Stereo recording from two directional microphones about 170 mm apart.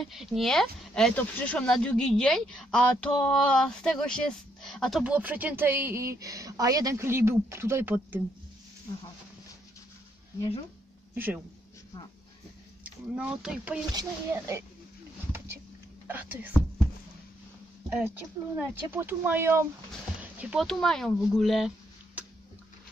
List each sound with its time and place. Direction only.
0.0 s speech: centre (ahead or behind)
11.1 s speech: 10° right (ahead or behind)
12.8 s speech: 5° right (ahead or behind)
13.9 s speech: 15° right (ahead or behind)
16.1 s speech: 10° right (ahead or behind)
18.6 s speech: 15° right (ahead or behind)